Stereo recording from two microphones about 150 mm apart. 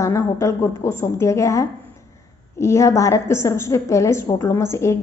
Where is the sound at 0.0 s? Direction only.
20° left (ahead or behind).